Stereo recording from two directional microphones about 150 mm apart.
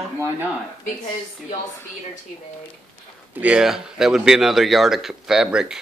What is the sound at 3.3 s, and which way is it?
Speech, 10° right (ahead or behind).